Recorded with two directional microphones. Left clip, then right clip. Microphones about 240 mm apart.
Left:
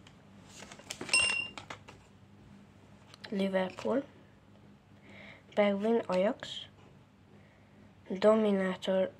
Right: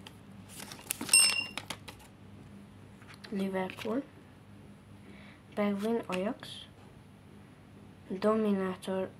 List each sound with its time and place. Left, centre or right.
1.1 s a sound: right
3.2 s speech: centre
5.1 s speech: centre
8.1 s a woman's voice: centre